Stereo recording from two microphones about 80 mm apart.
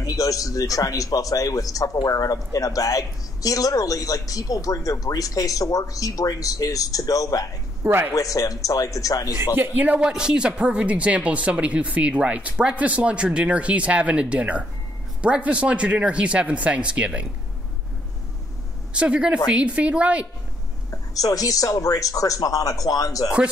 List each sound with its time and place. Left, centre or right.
0.0 s speech: left
7.8 s speech: right
8.1 s speech: left
9.6 s speech: centre
18.9 s speech: centre
20.9 s speech: left